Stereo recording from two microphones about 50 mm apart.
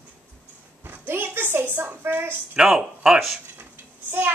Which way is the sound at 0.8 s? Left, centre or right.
Right.